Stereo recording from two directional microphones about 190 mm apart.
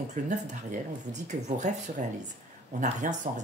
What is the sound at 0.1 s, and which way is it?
Speech, 40° right (ahead or behind).